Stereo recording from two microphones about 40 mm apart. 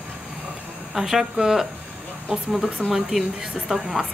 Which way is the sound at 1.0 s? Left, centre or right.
Centre.